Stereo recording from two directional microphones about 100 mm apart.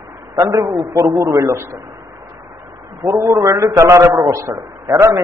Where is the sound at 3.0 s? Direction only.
30° right (ahead or behind).